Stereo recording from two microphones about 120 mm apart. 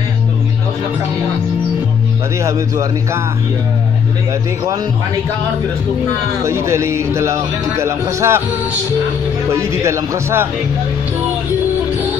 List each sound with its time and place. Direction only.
2.4 s a man's voice: 25° right (ahead or behind)
6.4 s a man's voice: 25° right (ahead or behind)
9.5 s a man's voice: 25° right (ahead or behind)